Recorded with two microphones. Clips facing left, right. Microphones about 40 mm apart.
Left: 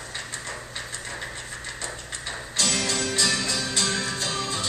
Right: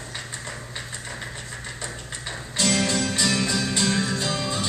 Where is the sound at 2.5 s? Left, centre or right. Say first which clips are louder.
Right 4 dB; centre.